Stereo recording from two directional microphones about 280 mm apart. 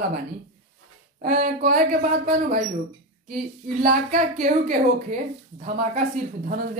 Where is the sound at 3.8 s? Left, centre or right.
Right.